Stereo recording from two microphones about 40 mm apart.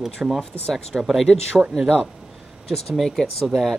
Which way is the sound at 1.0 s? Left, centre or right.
Centre.